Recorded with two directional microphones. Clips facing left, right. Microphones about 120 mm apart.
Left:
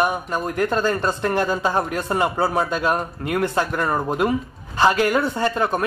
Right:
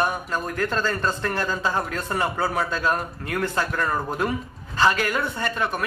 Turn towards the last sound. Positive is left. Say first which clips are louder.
# left 5 dB
turn(degrees=30)  # may be behind; listen again after turning